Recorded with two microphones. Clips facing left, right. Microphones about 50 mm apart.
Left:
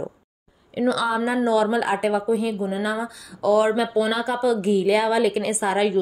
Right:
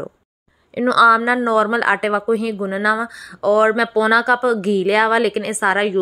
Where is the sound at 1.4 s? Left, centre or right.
Right.